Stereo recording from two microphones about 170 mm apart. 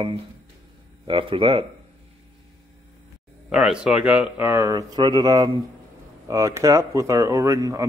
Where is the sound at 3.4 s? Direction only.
5° right (ahead or behind).